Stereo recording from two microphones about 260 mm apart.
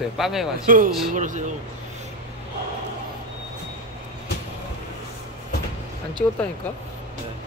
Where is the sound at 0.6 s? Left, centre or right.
Right.